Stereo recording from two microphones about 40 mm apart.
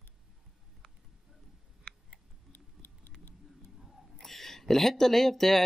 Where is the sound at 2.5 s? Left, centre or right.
Left.